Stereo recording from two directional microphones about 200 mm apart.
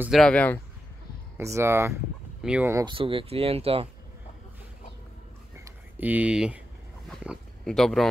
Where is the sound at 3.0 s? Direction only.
25° right (ahead or behind).